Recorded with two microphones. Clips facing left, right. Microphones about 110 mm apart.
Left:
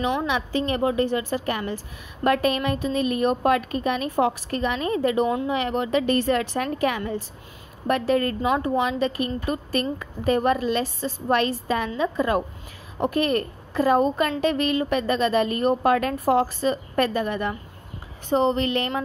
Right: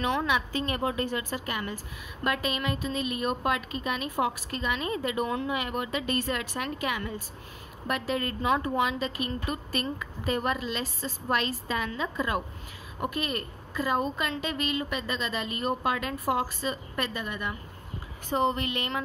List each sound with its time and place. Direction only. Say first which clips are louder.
0.0 s a woman's voice: left 3 dB; 25° left (ahead or behind); by 8.4 s 40° left (ahead or behind)
8.4 s a woman's voice: left 4 dB; 25° left (ahead or behind)
18.3 s a woman's voice: left 6 dB; 25° left (ahead or behind)